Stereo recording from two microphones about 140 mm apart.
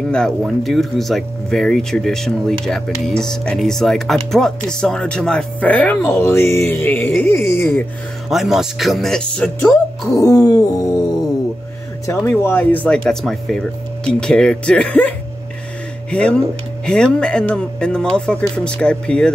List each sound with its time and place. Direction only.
0.4 s speech: centre (ahead or behind)
8.3 s speech: centre (ahead or behind)
10.1 s a sound: 25° left (ahead or behind)
12.1 s speech: 15° left (ahead or behind)